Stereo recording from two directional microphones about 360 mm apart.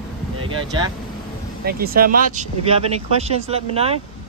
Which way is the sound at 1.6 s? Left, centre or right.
Right.